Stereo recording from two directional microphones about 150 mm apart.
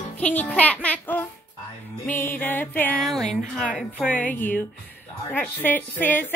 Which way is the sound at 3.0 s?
Centre (ahead or behind).